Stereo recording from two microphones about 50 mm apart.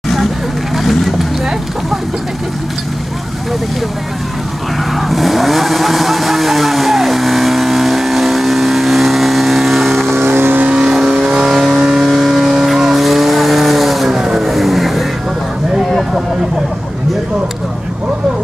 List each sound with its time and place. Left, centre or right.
0.7 s vehicle: centre
4.9 s vehicle: centre
10.1 s vehicle: right
10.7 s vehicle: centre